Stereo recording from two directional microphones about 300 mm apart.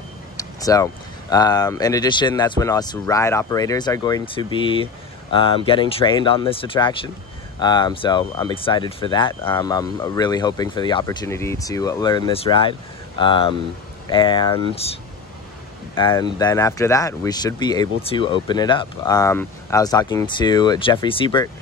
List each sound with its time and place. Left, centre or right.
0.4 s vehicle: centre
1.3 s speech: centre